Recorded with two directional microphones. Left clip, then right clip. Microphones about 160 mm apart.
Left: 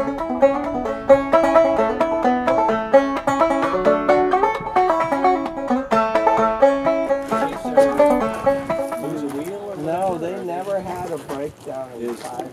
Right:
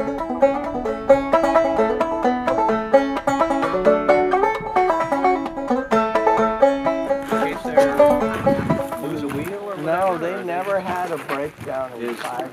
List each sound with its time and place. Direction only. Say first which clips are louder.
0.0 s music: left 1 dB; centre (ahead or behind)
9.8 s boat: right 2 dB; 20° right (ahead or behind)